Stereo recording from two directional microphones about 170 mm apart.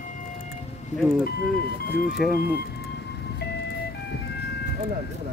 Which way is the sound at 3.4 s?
80° left.